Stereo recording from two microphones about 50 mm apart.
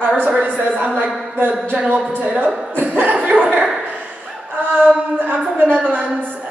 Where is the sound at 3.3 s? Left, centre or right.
Right.